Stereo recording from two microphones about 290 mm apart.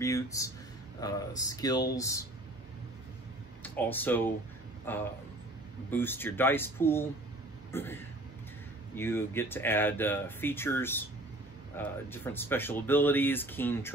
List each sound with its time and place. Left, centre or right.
0.0 s speech: centre
3.6 s speech: centre